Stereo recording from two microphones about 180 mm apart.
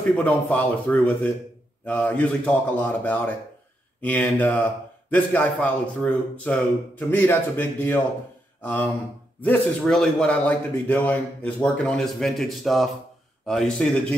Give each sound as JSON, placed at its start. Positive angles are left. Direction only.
{"t": 0.2, "sound": "a man's voice", "side_deg": 10}
{"t": 8.5, "sound": "a sound", "side_deg": 10}
{"t": 9.4, "sound": "speech", "side_deg": 10}